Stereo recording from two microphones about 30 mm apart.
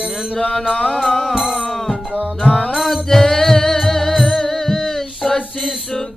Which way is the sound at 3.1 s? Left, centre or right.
Centre.